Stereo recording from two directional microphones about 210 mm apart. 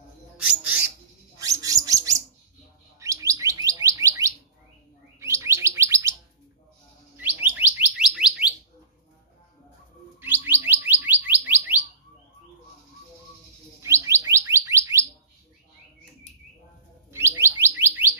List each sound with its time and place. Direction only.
1.4 s bird: 15° right (ahead or behind)
7.2 s bird: 10° right (ahead or behind)
10.2 s bird: 10° right (ahead or behind)
13.8 s bird: 15° right (ahead or behind)
14.5 s chirp tone: 15° right (ahead or behind)
17.1 s bird: 10° right (ahead or behind)